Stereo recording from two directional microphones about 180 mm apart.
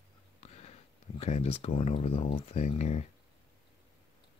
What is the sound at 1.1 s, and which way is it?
Speech, 35° left (ahead or behind).